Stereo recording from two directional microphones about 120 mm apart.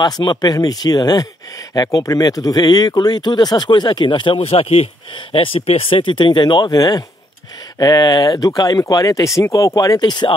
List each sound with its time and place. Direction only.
0.0 s speech: 35° left (ahead or behind)